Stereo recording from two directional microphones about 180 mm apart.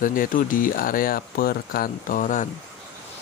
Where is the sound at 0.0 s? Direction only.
50° left (ahead or behind).